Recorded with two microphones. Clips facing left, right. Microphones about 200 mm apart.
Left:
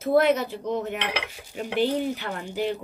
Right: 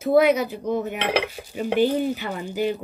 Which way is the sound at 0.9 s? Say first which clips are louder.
Right 6 dB; 35° right (ahead or behind).